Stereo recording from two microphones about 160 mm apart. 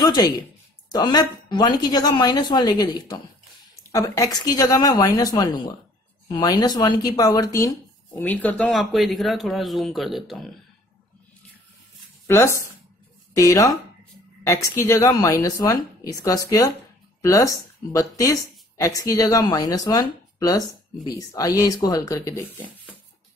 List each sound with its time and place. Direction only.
0.0 s a woman's voice: 25° left (ahead or behind); by 10.5 s centre (ahead or behind)
12.3 s speech: 15° left (ahead or behind)